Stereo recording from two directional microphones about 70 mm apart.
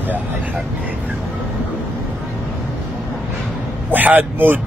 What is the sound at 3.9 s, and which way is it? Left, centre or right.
Speech, right.